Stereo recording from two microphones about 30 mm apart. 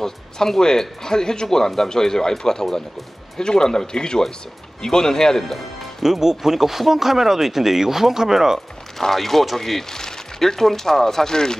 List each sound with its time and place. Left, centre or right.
0.0 s speech: centre
5.4 s speech: centre
6.0 s speech: centre
8.9 s speech: centre